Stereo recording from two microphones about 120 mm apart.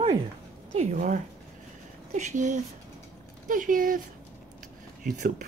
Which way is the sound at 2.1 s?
90° right.